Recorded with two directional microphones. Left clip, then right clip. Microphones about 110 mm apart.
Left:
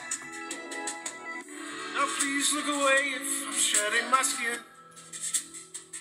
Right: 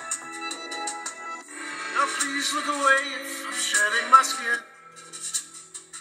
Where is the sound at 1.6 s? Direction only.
20° right (ahead or behind).